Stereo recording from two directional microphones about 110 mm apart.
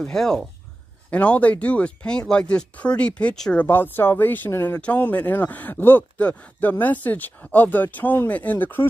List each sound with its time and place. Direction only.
0.0 s speech: 5° left (ahead or behind)
3.6 s speech: 20° left (ahead or behind)